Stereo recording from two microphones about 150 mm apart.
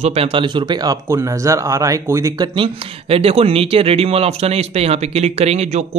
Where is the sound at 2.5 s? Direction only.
35° right (ahead or behind).